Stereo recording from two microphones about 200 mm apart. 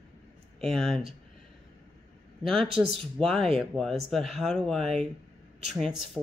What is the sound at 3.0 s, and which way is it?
Speech, 5° left (ahead or behind).